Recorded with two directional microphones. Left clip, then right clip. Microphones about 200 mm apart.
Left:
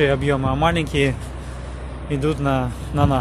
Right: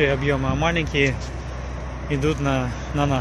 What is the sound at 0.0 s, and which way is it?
Speech, 20° left (ahead or behind).